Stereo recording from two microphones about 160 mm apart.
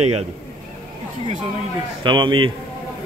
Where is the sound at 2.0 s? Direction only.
30° right (ahead or behind).